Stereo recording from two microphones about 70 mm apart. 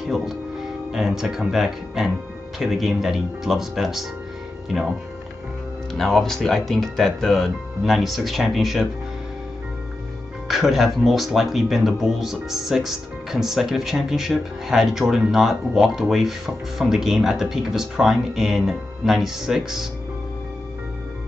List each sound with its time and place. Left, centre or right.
0.1 s speech: centre
5.9 s speech: centre
10.5 s speech: centre